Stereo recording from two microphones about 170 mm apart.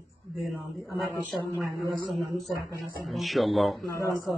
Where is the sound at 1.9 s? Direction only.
Centre (ahead or behind).